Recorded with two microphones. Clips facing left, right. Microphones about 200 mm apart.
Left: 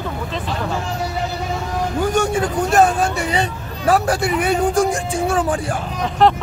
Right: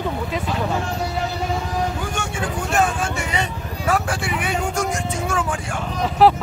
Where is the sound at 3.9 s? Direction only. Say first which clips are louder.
Left 6 dB; 40° left (ahead or behind).